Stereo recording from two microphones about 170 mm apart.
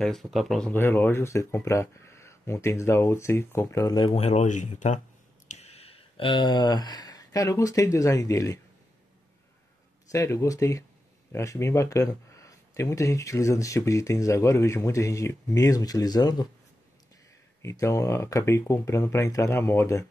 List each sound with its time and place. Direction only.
0.0 s speech: centre (ahead or behind); by 8.5 s 20° left (ahead or behind)
10.1 s speech: 15° left (ahead or behind)
17.6 s speech: 15° left (ahead or behind)